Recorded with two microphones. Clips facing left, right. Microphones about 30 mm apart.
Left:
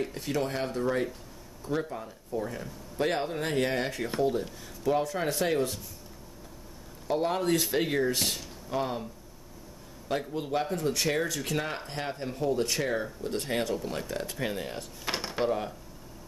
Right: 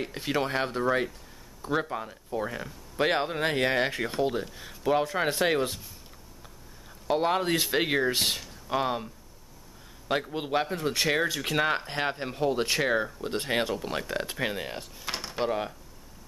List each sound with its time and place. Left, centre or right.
0.0 s speech: right
7.1 s speech: right
10.3 s speech: right
15.0 s drawer open or close: centre
15.4 s speech: right